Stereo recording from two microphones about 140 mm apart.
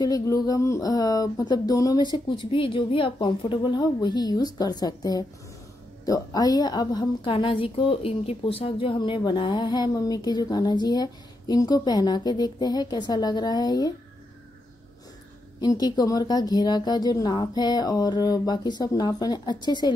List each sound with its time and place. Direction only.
0.0 s a woman's voice: 25° left (ahead or behind)
15.6 s a woman's voice: 30° left (ahead or behind)